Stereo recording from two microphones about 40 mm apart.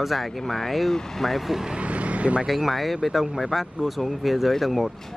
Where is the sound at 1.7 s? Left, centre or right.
Right.